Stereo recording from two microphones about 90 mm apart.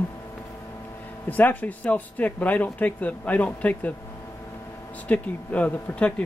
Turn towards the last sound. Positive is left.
turn(degrees=15)  # may be behind; listen again after turning